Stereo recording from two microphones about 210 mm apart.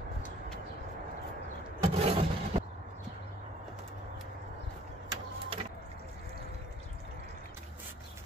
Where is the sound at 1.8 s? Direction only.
30° right (ahead or behind).